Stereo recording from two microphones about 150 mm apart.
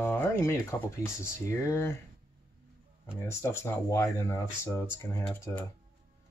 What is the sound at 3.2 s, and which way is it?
Speech, 15° left (ahead or behind).